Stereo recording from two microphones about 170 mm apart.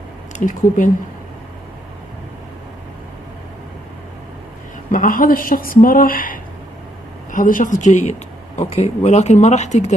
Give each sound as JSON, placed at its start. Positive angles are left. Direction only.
{"t": 0.4, "sound": "speech", "side_deg": 50}
{"t": 4.9, "sound": "speech", "side_deg": 55}